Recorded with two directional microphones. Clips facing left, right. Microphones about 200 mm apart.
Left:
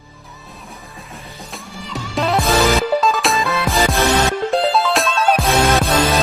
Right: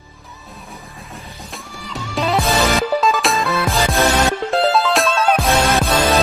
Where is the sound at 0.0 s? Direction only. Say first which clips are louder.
Left 1 dB; centre (ahead or behind).